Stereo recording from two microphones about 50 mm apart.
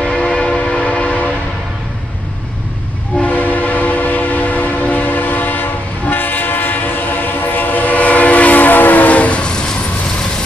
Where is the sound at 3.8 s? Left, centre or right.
Left.